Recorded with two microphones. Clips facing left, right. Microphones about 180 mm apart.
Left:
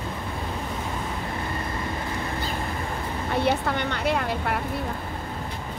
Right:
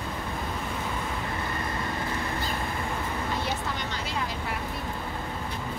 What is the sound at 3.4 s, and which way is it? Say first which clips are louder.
Vehicle: left 8 dB; 60° left (ahead or behind).